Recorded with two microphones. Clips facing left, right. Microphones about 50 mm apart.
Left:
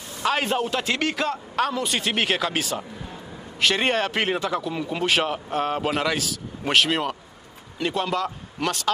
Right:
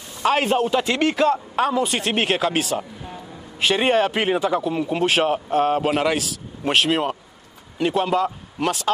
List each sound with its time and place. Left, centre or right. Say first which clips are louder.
0.2 s speech: right 4 dB; centre
1.0 s speech: right 7 dB; right
1.5 s speech: right 4 dB; centre